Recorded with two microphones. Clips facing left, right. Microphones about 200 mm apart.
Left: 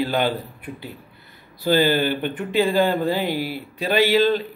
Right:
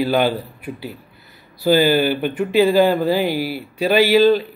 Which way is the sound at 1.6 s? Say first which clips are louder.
Right 4 dB; 10° right (ahead or behind).